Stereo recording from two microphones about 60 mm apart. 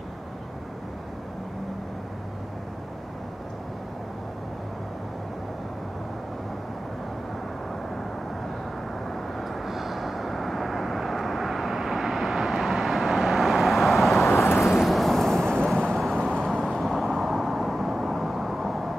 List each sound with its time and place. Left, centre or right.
9.1 s vehicle: centre
14.3 s vehicle: left
14.7 s vehicle: centre